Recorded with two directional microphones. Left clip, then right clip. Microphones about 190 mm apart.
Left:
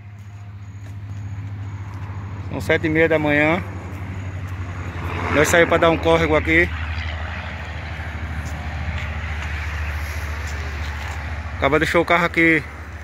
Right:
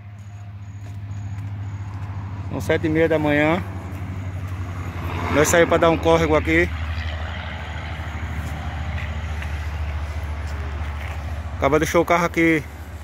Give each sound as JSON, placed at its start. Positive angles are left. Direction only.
{"t": 2.5, "sound": "speech", "side_deg": -10}
{"t": 5.0, "sound": "vehicle", "side_deg": -55}
{"t": 5.3, "sound": "speech", "side_deg": -10}
{"t": 11.6, "sound": "speech", "side_deg": -10}